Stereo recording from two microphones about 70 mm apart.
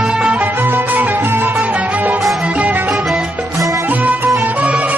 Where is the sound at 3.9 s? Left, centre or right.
Right.